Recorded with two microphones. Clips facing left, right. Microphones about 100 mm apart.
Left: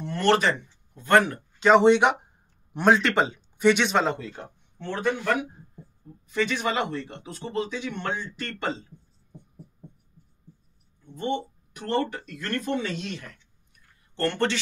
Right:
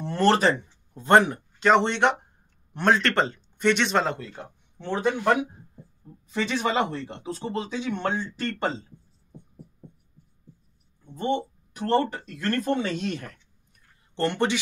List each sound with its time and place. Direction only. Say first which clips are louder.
0.0 s speech: right 1 dB; 30° right (ahead or behind)
1.6 s speech: left 3 dB; 5° left (ahead or behind)
4.7 s speech: right 2 dB; 20° right (ahead or behind)
11.1 s speech: right 2 dB; 30° right (ahead or behind)
14.1 s speech: right 1 dB; 15° right (ahead or behind)